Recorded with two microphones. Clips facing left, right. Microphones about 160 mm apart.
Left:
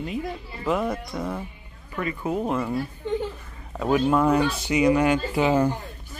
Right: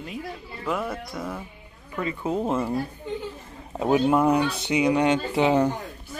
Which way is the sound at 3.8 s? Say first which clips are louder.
Right 1 dB; 10° right (ahead or behind).